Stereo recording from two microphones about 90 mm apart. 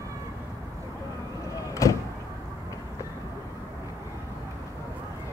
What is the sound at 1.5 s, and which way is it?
Vehicle, 35° left (ahead or behind).